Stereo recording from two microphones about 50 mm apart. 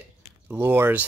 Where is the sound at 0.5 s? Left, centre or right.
Right.